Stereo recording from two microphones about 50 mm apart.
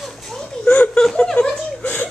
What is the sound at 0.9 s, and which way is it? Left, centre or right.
Speech, centre.